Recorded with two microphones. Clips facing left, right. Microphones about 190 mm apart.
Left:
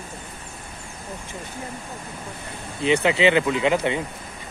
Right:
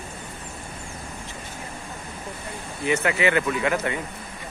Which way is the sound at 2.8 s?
20° left (ahead or behind).